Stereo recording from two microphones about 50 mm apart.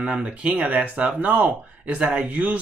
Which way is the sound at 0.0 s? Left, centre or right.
Right.